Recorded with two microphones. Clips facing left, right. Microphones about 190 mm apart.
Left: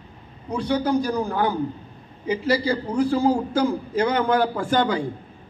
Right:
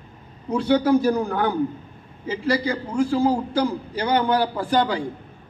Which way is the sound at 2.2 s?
25° left (ahead or behind).